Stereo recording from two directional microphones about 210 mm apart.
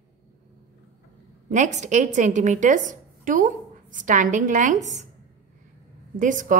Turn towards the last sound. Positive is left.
turn(degrees=-40)  # may be behind; listen again after turning